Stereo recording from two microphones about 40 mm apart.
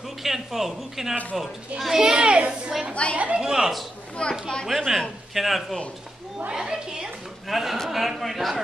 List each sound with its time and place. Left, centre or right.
0.2 s a child's voice: centre; by 2.5 s right
2.9 s a woman's voice: left
3.3 s speech: centre
4.2 s speech: centre
4.6 s a man's voice: centre
6.5 s speech: centre
7.4 s a man's voice: centre